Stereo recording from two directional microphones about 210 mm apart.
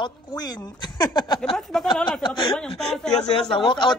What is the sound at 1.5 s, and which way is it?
Speech, centre (ahead or behind).